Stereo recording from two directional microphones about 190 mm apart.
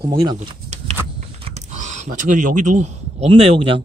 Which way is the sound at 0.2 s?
20° right (ahead or behind).